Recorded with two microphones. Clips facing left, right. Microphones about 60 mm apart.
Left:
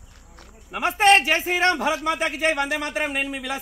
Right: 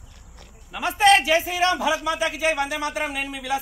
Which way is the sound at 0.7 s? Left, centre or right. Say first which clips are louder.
Even; left.